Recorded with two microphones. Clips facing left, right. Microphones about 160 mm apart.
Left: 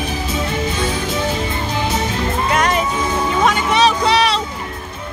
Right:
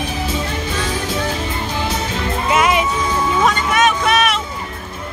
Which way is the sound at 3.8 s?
30° left (ahead or behind).